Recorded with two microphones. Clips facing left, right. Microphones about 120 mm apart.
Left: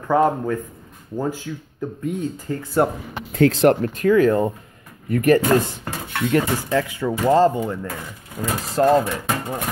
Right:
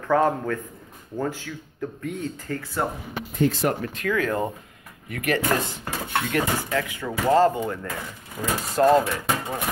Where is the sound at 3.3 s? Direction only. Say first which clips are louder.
Left 7 dB; 90° left.